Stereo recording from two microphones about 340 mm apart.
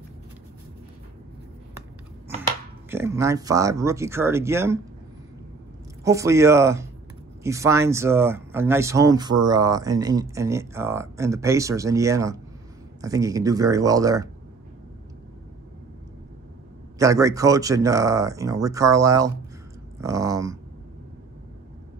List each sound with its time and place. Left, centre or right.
2.9 s speech: centre
6.0 s speech: centre
17.0 s speech: centre